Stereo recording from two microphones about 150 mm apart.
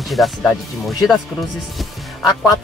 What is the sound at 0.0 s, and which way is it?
Speech, centre (ahead or behind).